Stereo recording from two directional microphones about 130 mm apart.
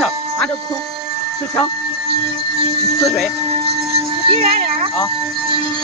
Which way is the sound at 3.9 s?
50° right (ahead or behind).